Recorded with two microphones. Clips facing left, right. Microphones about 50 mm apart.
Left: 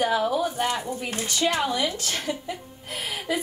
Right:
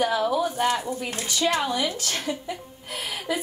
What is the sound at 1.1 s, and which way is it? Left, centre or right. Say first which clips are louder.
Speech: left 1 dB; left.